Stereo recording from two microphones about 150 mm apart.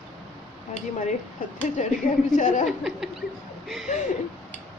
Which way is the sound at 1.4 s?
60° left (ahead or behind).